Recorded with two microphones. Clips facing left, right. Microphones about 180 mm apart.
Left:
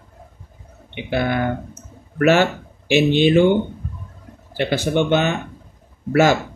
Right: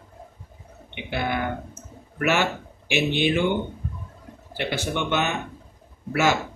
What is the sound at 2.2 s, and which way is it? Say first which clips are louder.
Speech: left 8 dB; 55° left (ahead or behind).